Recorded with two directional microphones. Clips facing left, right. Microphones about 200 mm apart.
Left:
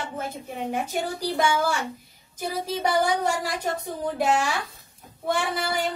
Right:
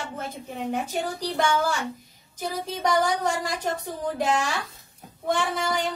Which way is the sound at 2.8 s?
10° left (ahead or behind).